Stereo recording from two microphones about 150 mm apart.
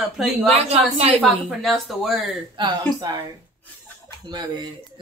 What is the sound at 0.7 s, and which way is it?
Speech, 45° right (ahead or behind).